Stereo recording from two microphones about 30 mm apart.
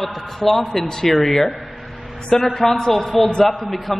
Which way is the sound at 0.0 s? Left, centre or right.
Centre.